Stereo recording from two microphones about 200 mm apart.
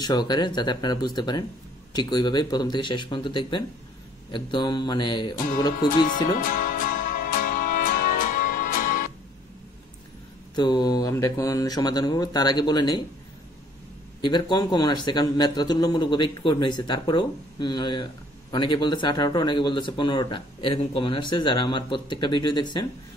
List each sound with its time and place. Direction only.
0.0 s speech: 20° left (ahead or behind)
6.0 s music: 45° left (ahead or behind)
10.5 s speech: 20° left (ahead or behind)
14.2 s speech: 20° left (ahead or behind)